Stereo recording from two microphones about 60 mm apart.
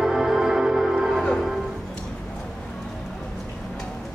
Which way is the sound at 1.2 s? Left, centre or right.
Centre.